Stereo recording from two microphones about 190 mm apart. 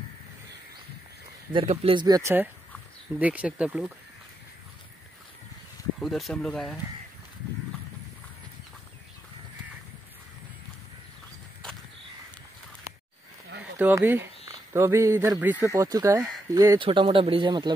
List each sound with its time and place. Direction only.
1.5 s speech: 30° right (ahead or behind); by 3.9 s 5° right (ahead or behind)
5.9 s speech: centre (ahead or behind)
13.6 s speech: 10° right (ahead or behind)